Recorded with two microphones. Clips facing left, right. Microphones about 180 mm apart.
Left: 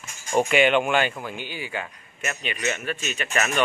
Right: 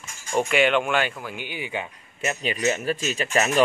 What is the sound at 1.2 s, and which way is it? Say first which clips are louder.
A man's voice: even; 10° right (ahead or behind).